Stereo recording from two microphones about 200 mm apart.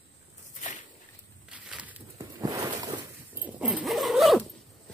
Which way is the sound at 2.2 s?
20° right (ahead or behind).